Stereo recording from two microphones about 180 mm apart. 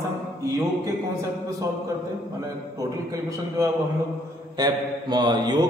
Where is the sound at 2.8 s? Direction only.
20° right (ahead or behind).